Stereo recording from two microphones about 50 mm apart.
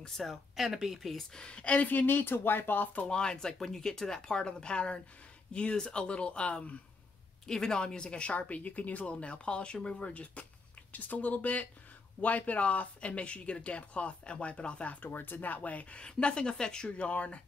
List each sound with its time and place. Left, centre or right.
0.0 s speech: centre
1.1 s speech: centre
1.9 s speech: left
3.1 s speech: centre
7.4 s speech: centre
15.1 s speech: left